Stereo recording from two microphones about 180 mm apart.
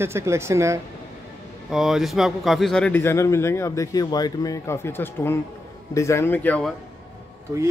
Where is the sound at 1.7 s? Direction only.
Centre (ahead or behind).